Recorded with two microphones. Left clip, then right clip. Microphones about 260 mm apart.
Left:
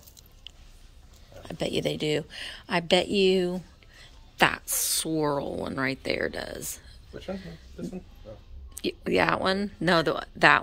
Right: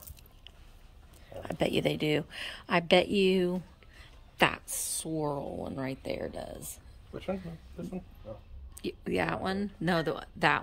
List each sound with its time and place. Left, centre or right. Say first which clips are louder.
1.4 s speech: even; centre
7.2 s speech: even; right
8.7 s speech: left 7 dB; centre